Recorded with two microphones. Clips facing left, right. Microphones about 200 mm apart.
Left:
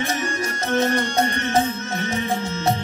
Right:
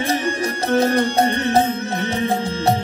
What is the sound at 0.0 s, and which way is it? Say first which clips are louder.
Music: right 4 dB; 35° right (ahead or behind).